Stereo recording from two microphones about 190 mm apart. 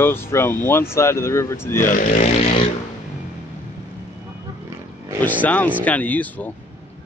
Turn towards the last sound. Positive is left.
turn(degrees=10)  # may be behind; listen again after turning